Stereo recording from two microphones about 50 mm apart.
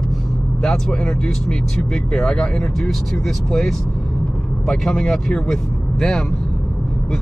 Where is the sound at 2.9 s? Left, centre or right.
Centre.